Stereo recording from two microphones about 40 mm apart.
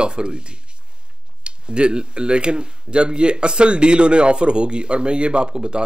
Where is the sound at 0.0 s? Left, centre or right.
Right.